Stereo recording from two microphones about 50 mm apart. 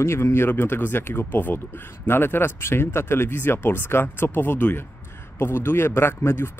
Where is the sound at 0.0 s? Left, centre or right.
Left.